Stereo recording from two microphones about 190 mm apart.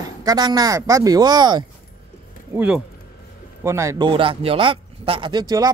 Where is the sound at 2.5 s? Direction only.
5° right (ahead or behind).